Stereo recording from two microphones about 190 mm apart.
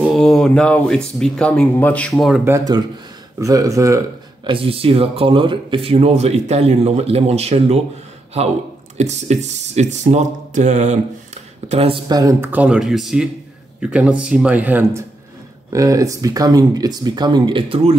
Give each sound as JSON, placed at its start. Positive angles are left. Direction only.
{"t": 0.2, "sound": "speech", "side_deg": 5}
{"t": 2.4, "sound": "speech", "side_deg": -15}
{"t": 4.5, "sound": "speech", "side_deg": -30}
{"t": 8.9, "sound": "speech", "side_deg": -35}